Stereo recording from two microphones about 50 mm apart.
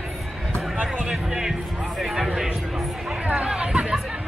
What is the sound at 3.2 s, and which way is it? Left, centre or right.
Chatter, right.